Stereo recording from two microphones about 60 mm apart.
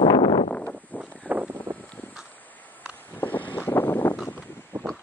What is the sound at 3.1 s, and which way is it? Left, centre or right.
Wind, left.